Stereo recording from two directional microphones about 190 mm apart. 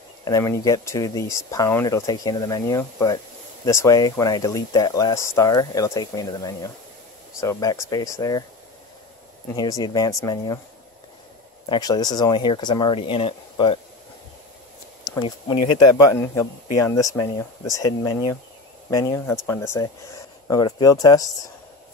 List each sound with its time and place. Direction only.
0.2 s speech: 20° left (ahead or behind)
9.6 s speech: 20° left (ahead or behind)
11.7 s speech: 20° left (ahead or behind)
15.1 s speech: 25° left (ahead or behind)